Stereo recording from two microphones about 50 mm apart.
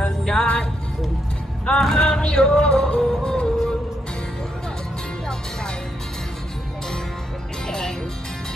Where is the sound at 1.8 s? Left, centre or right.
Centre.